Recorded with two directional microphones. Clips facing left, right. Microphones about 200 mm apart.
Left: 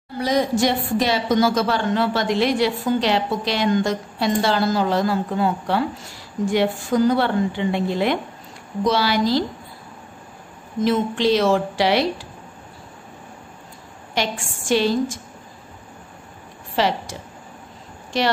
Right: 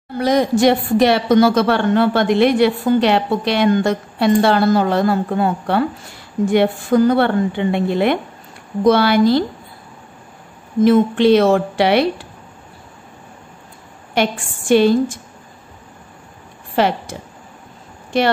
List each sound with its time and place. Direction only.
0.2 s a woman's voice: 60° right (ahead or behind)
10.8 s a woman's voice: 55° right (ahead or behind)
14.1 s a woman's voice: 55° right (ahead or behind)
16.7 s speech: 55° right (ahead or behind)